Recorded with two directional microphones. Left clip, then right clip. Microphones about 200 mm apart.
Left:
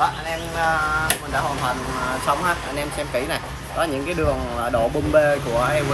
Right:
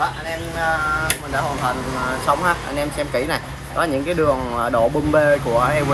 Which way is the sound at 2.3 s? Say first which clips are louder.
Right 4 dB; 5° right (ahead or behind).